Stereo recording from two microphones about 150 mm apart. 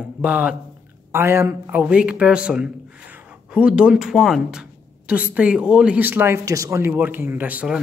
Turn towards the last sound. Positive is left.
turn(degrees=-10)  # may be behind; listen again after turning